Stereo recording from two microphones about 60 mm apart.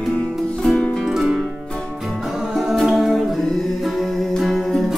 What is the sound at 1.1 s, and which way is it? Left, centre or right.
Music, centre.